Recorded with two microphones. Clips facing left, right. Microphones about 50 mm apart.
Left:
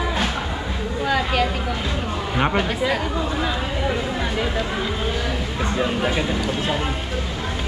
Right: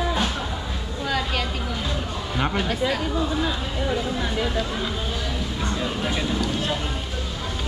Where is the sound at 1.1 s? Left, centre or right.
Centre.